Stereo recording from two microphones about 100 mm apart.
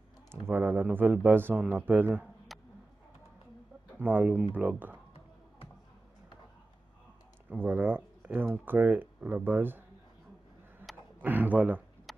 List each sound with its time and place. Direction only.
0.5 s speech: 20° right (ahead or behind)
4.0 s speech: 20° right (ahead or behind)
7.4 s speech: 20° right (ahead or behind)
11.1 s speech: 20° right (ahead or behind)
12.1 s a sound: centre (ahead or behind)